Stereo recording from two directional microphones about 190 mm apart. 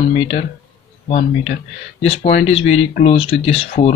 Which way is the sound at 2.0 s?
30° left (ahead or behind).